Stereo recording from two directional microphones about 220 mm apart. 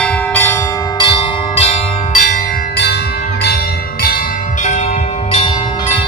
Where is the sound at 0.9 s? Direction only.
20° left (ahead or behind).